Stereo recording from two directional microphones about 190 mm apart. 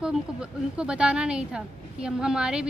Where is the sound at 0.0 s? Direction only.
5° right (ahead or behind).